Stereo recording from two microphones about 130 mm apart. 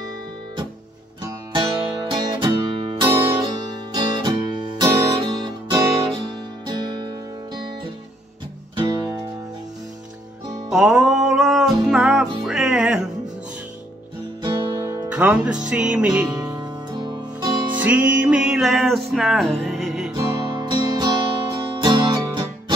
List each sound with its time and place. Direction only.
2.1 s music: 40° right (ahead or behind)
10.7 s music: 5° right (ahead or behind)
14.4 s music: 30° right (ahead or behind)
14.8 s music: 20° right (ahead or behind)
16.3 s music: 30° right (ahead or behind)
17.7 s music: 15° right (ahead or behind)
20.2 s music: 25° right (ahead or behind)